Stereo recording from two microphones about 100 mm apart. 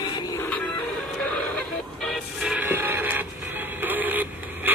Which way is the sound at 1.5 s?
10° left (ahead or behind).